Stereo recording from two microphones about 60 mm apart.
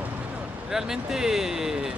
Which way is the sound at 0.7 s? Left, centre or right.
Centre.